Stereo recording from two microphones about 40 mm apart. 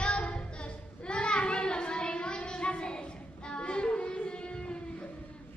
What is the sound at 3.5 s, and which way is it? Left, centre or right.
Child singing, left.